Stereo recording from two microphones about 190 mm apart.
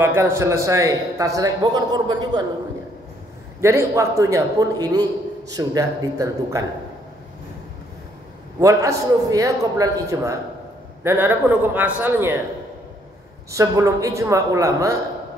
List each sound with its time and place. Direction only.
0.0 s a man's voice: 15° right (ahead or behind)
3.6 s a man's voice: 15° right (ahead or behind)
8.5 s a man's voice: 15° right (ahead or behind)
13.5 s a man's voice: 15° right (ahead or behind)